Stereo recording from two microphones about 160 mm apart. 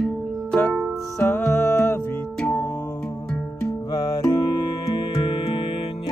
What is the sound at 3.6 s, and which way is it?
Music, 20° left (ahead or behind).